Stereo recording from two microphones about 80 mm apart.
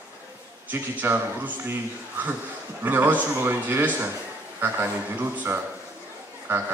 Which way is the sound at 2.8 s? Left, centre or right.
Right.